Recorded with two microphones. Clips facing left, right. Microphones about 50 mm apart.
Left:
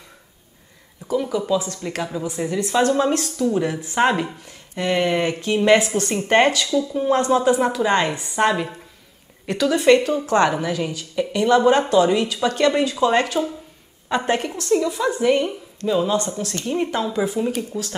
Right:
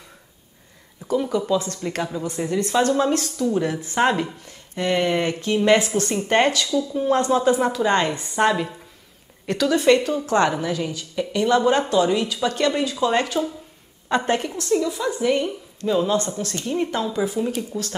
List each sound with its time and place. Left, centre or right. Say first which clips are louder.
1.2 s a woman's voice: left 1 dB; centre
2.8 s speech: left 2 dB; left
3.6 s speech: left 1 dB; left